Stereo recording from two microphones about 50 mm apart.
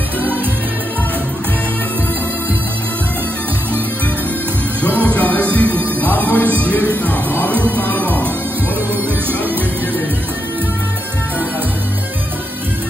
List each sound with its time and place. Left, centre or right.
4.8 s music: left